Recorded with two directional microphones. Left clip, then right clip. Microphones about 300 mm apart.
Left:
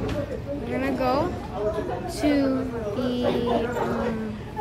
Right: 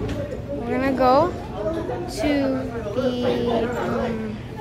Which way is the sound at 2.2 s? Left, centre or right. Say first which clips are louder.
Right 1 dB; centre.